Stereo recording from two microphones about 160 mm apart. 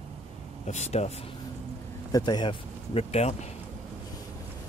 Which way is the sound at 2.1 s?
25° left (ahead or behind).